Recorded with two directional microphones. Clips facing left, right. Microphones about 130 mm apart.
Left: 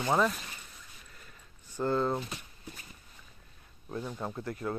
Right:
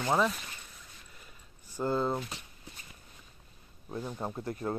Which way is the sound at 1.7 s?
10° right (ahead or behind).